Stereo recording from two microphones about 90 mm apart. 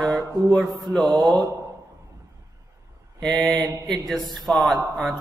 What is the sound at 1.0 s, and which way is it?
Mantra, 50° right (ahead or behind).